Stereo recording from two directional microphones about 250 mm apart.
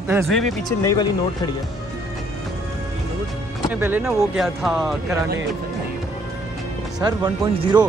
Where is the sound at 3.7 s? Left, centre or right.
Centre.